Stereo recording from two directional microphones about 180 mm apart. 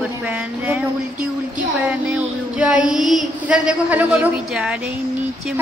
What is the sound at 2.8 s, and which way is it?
Child singing, 45° right (ahead or behind).